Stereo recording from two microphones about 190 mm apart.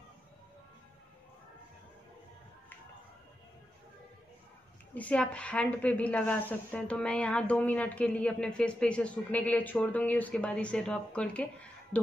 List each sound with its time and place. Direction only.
4.9 s a woman's voice: 5° left (ahead or behind)